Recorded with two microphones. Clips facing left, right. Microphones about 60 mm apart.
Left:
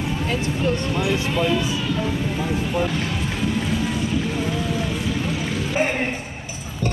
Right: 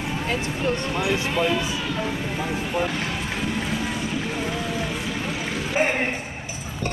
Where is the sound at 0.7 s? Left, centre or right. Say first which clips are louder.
Left 1 dB; right.